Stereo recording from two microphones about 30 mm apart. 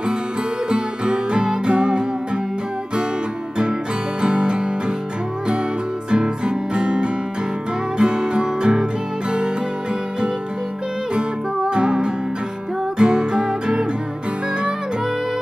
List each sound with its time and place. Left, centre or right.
0.7 s music: right
4.2 s music: right
6.0 s music: right
11.7 s music: right